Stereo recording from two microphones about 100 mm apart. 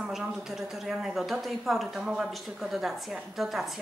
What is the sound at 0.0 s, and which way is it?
A woman's voice, 5° right (ahead or behind).